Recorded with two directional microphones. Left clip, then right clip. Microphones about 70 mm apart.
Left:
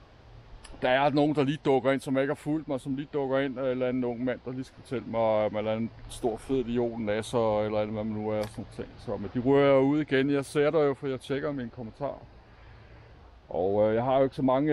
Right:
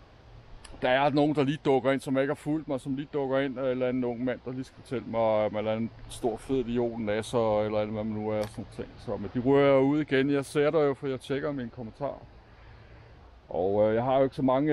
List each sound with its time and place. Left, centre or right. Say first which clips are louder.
0.7 s speech: even; centre
8.5 s speech: even; centre
13.5 s speech: even; centre